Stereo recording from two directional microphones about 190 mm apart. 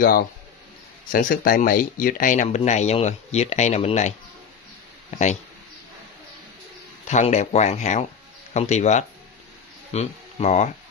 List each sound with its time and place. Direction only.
1.1 s speech: 50° left (ahead or behind)
7.1 s speech: 40° left (ahead or behind)